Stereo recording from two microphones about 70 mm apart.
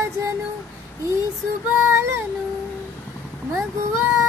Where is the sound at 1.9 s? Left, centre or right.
Right.